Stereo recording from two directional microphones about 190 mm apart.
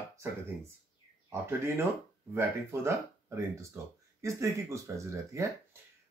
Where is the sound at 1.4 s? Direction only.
10° right (ahead or behind).